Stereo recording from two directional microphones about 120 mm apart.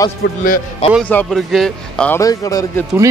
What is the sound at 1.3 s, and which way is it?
Speech, centre (ahead or behind).